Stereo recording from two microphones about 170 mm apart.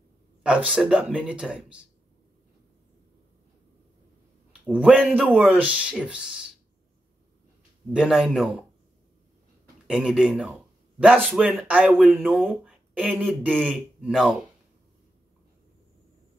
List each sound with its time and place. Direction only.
0.4 s a man's voice: 5° right (ahead or behind)
4.5 s a man's voice: 5° right (ahead or behind)
7.9 s a man's voice: 5° right (ahead or behind)
9.8 s a man's voice: 5° right (ahead or behind)